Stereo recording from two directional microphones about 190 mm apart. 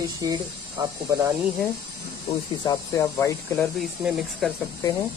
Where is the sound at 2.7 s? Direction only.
15° left (ahead or behind).